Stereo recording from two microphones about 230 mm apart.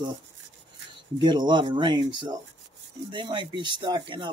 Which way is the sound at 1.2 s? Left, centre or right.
Centre.